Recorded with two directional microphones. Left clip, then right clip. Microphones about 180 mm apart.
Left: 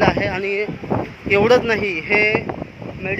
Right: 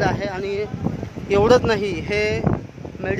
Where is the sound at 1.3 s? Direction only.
10° right (ahead or behind).